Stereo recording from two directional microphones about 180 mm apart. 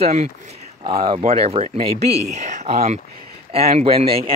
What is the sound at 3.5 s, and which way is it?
Speech, 35° right (ahead or behind).